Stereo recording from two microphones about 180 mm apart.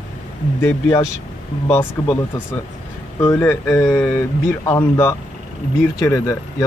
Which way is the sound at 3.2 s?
10° left (ahead or behind).